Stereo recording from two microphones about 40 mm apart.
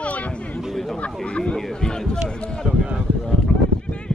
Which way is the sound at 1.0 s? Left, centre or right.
Left.